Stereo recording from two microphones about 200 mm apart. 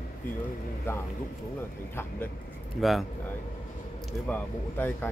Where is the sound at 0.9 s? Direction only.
10° left (ahead or behind).